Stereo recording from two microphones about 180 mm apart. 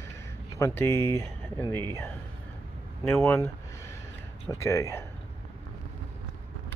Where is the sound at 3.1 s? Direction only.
10° left (ahead or behind).